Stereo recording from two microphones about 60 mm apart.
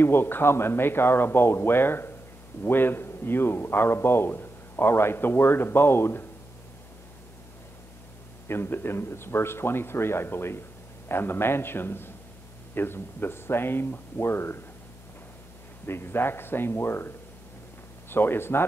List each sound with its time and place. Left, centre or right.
0.0 s a man's voice: left
8.5 s a man's voice: left
15.9 s a man's voice: left
18.1 s a man's voice: left